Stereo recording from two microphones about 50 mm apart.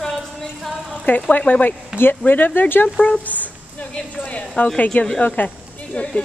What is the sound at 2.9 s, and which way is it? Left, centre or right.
Speech, left.